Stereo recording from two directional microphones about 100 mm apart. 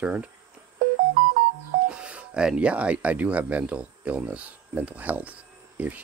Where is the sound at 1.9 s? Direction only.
10° right (ahead or behind).